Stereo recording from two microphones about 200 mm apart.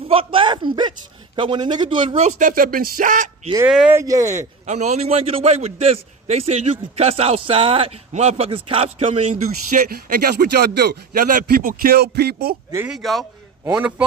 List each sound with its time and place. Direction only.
0.1 s a man's voice: 25° right (ahead or behind)
3.5 s speech: 5° right (ahead or behind)
4.0 s speech: 15° right (ahead or behind)
4.6 s a man's voice: 35° right (ahead or behind)
9.8 s speech: 50° right (ahead or behind)
12.7 s speech: 5° right (ahead or behind)